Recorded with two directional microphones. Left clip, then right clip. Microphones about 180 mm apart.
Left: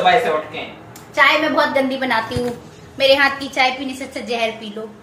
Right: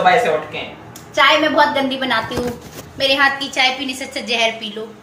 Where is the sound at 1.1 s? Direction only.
20° left (ahead or behind).